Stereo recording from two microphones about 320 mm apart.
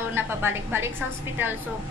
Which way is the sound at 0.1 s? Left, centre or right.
Centre.